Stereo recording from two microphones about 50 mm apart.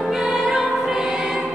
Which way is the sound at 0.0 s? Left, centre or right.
Centre.